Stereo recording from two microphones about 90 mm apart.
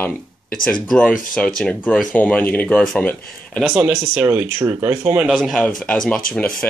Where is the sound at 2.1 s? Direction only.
20° left (ahead or behind).